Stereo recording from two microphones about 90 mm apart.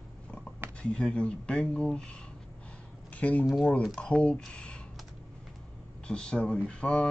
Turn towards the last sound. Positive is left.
turn(degrees=10)  # may be behind; listen again after turning